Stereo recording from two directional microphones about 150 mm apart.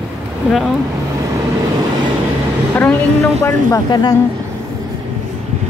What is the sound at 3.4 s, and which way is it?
Speech, 25° left (ahead or behind).